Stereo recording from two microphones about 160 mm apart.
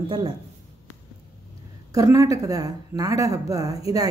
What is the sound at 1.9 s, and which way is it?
Speech, 20° right (ahead or behind).